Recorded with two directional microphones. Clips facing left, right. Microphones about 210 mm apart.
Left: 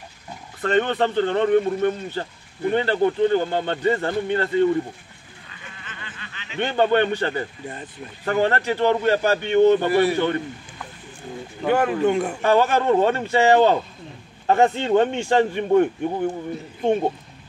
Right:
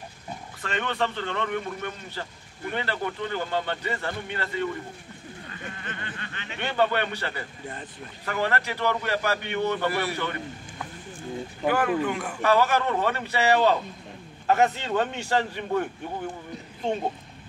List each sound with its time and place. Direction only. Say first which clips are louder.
0.6 s a man's voice: left 9 dB; 35° left (ahead or behind)
5.5 s a sound: right 4 dB; 45° right (ahead or behind)
6.6 s a man's voice: left 6 dB; 30° left (ahead or behind)
11.6 s speech: left 5 dB; 25° left (ahead or behind)